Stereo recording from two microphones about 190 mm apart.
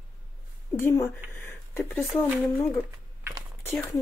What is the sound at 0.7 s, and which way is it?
Speech, 15° left (ahead or behind).